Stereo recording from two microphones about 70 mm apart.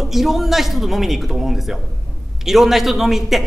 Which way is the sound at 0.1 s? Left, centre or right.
Centre.